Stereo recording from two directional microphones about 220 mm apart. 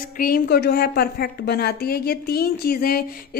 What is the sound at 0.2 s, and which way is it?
A woman's voice, 45° left (ahead or behind).